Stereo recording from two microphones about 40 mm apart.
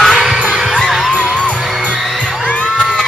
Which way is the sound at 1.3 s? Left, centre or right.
Left.